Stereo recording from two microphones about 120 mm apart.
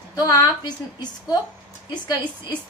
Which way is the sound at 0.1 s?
35° left (ahead or behind).